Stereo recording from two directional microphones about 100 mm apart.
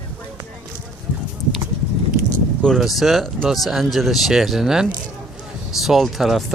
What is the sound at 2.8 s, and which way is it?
Speech, centre (ahead or behind).